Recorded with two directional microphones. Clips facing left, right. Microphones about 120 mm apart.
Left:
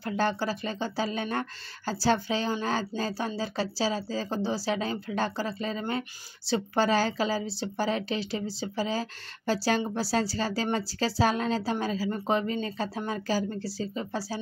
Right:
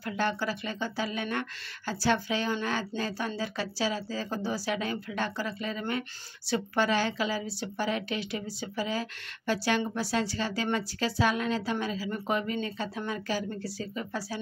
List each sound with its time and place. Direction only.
0.1 s speech: 35° left (ahead or behind)